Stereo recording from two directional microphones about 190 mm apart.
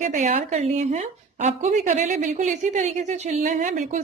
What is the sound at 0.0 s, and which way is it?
A woman's voice, 40° right (ahead or behind).